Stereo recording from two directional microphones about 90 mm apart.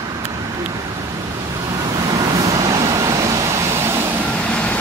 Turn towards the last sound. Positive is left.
turn(degrees=10)  # may be behind; listen again after turning